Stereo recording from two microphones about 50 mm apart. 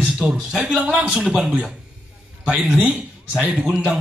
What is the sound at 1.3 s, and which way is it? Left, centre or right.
Speech, centre.